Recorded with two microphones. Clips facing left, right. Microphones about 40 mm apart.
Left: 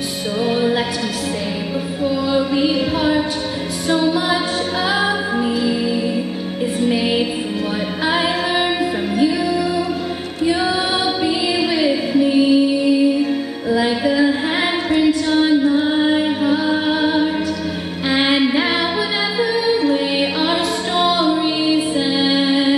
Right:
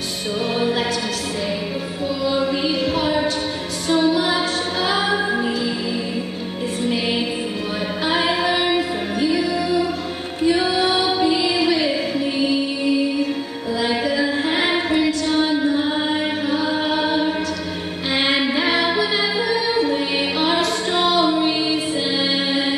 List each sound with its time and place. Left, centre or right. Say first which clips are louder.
0.4 s music: left 3 dB; centre
2.0 s music: left 2 dB; centre
6.9 s music: left 2 dB; centre
13.7 s female singing: left 4 dB; centre
15.6 s music: left 4 dB; centre